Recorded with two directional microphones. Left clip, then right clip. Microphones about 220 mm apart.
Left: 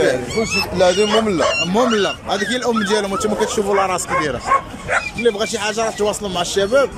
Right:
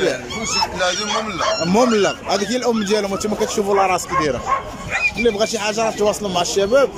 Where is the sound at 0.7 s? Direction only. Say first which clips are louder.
Left 6 dB; 30° left (ahead or behind).